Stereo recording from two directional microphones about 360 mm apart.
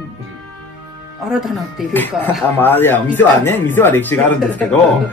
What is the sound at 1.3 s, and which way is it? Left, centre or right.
A man's voice, centre.